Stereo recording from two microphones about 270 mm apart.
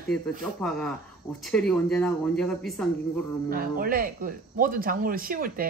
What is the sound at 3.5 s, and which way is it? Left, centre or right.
Speech, right.